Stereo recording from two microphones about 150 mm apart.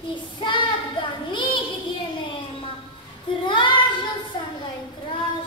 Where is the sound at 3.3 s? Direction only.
30° left (ahead or behind).